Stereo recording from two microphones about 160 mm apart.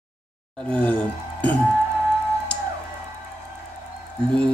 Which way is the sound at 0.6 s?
5° left (ahead or behind).